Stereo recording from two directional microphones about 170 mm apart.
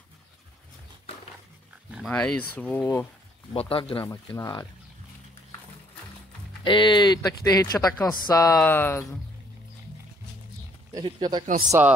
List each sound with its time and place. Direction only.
2.0 s speech: 5° left (ahead or behind)
3.5 s speech: 35° left (ahead or behind)
4.4 s speech: 20° left (ahead or behind)
6.6 s speech: 30° left (ahead or behind); by 9.2 s 10° left (ahead or behind)
10.9 s speech: 25° right (ahead or behind)